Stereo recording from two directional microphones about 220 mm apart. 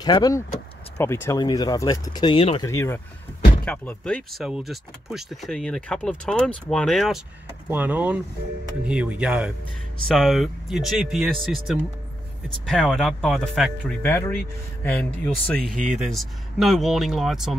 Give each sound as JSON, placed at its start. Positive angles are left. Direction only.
{"t": 0.0, "sound": "speech", "side_deg": 20}